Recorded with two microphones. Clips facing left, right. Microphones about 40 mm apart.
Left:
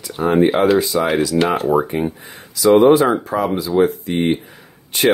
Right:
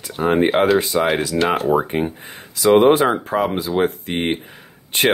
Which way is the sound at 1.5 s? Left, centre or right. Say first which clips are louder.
Left 1 dB; centre.